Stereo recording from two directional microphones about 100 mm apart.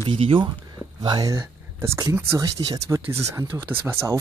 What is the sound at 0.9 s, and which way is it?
Speech, 40° right (ahead or behind).